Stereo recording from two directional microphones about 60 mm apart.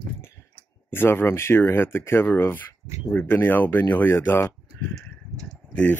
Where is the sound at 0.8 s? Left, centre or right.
Left.